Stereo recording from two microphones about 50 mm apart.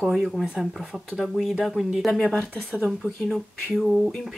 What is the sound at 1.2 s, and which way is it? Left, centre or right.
Speech, centre.